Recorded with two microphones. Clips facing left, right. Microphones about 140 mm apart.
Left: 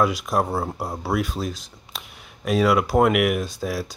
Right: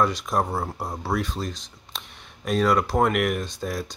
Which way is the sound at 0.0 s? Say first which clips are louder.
Left 2 dB; 5° left (ahead or behind).